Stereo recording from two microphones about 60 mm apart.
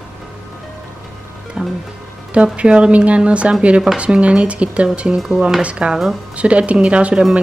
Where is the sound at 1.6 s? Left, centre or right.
Centre.